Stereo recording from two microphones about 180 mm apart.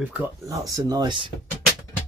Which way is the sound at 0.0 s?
10° right (ahead or behind).